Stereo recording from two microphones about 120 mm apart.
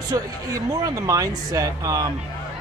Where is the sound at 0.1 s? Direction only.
30° right (ahead or behind).